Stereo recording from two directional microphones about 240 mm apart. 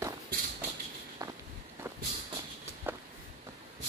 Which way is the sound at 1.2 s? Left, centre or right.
Centre.